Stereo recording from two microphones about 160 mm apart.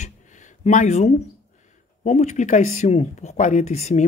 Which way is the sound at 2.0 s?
50° left (ahead or behind).